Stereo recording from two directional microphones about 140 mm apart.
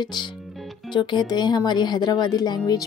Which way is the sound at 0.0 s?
30° left (ahead or behind).